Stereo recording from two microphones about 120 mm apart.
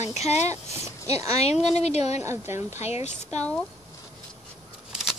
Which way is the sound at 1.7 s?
65° left (ahead or behind).